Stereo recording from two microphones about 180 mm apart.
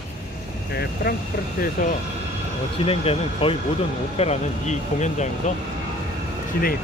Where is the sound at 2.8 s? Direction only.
30° left (ahead or behind).